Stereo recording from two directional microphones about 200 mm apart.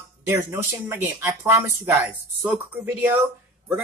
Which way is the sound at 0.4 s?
10° right (ahead or behind).